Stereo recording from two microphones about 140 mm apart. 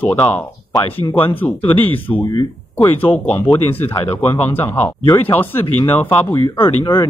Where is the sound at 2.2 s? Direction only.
30° left (ahead or behind).